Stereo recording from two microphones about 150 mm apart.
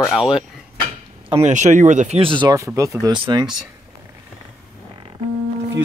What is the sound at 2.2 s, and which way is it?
Speech, 35° right (ahead or behind).